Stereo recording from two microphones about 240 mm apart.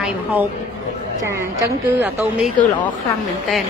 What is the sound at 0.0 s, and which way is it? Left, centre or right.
Speech, centre.